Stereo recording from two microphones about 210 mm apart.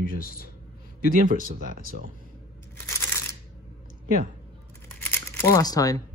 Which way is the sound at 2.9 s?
10° left (ahead or behind).